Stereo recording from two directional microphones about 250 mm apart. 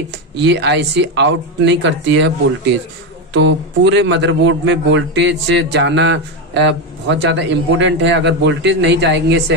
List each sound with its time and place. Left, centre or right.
0.4 s a man's voice: right
3.3 s a man's voice: right